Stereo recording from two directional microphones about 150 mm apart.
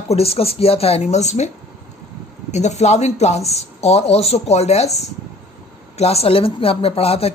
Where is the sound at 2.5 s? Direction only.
50° left (ahead or behind).